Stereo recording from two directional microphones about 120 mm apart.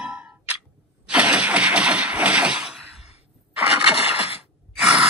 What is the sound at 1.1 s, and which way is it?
Engine starting, 10° right (ahead or behind).